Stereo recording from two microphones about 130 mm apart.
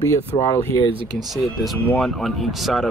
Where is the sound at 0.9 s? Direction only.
40° right (ahead or behind).